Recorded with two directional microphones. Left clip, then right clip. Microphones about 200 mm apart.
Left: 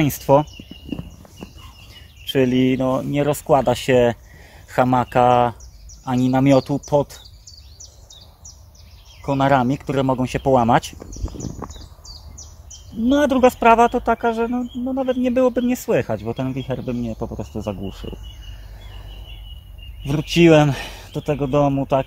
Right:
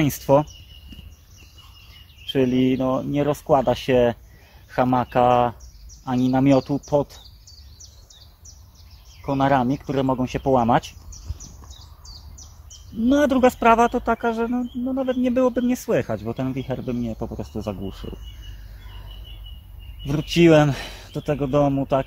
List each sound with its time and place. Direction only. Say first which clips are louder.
0.0 s speech: left 2 dB; 5° left (ahead or behind)
2.2 s a man's voice: left 3 dB; 15° left (ahead or behind)
9.2 s speech: left 3 dB; 20° left (ahead or behind)
13.0 s speech: left 2 dB; centre (ahead or behind)
20.1 s a man's voice: left 2 dB; 10° left (ahead or behind)